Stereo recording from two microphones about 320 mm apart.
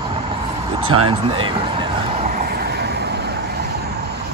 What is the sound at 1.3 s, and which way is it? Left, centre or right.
Vehicle, centre.